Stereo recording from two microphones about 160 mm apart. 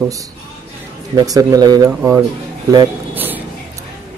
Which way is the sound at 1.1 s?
20° right (ahead or behind).